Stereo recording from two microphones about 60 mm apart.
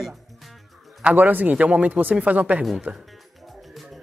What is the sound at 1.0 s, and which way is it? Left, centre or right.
Speech, right.